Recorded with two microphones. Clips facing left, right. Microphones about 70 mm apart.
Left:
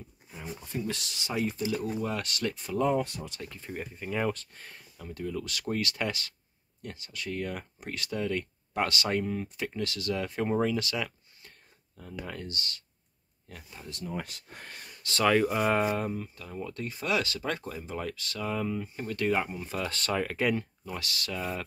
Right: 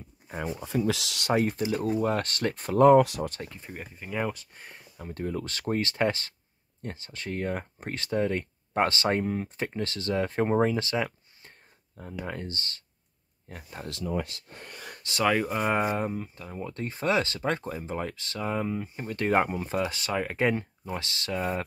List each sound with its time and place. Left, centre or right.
0.8 s speech: right
1.3 s speech: right
3.0 s speech: right
3.4 s speech: right
3.7 s speech: centre
5.0 s speech: right
15.0 s speech: centre
19.2 s speech: right
19.8 s speech: centre
20.3 s speech: right